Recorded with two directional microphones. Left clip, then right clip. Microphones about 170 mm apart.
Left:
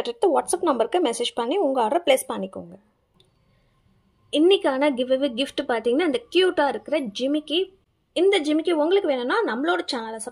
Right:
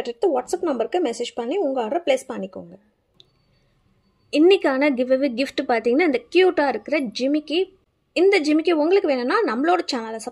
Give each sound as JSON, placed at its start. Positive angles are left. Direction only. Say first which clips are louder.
{"t": 0.1, "sound": "speech", "louder": "left 1 dB", "side_deg": 0}
{"t": 4.3, "sound": "a woman's voice", "louder": "right 2 dB", "side_deg": -15}